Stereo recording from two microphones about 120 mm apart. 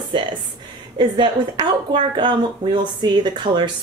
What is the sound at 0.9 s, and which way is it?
Speech, 40° right (ahead or behind).